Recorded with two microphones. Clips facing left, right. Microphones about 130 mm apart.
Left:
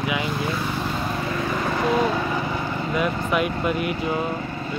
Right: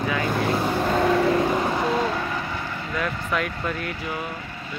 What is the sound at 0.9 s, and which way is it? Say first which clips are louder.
Vehicle: right 8 dB; 65° right (ahead or behind).